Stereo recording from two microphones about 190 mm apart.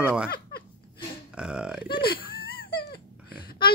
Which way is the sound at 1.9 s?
25° left (ahead or behind).